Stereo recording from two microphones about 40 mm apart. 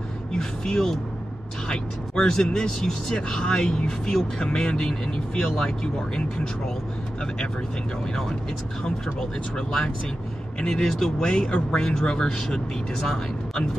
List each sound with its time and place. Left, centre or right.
0.3 s vehicle: centre
1.7 s speech: centre
9.6 s speech: centre